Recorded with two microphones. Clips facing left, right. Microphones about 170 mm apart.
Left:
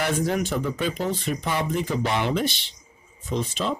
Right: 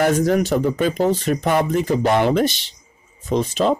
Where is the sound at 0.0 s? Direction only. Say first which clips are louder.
Right 7 dB; 40° right (ahead or behind).